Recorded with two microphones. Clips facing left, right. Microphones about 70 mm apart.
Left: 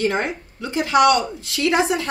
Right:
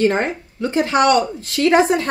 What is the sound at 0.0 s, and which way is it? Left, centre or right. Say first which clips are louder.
Speech: right 4 dB; right.